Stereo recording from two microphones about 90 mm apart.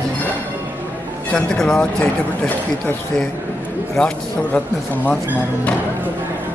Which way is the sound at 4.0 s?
5° left (ahead or behind).